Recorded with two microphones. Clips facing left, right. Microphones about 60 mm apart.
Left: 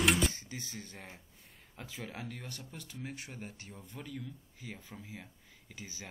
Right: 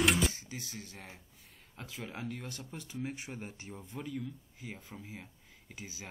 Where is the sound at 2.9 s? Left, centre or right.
Right.